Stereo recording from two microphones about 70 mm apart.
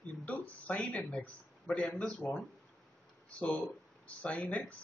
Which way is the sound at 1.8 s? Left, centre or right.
Left.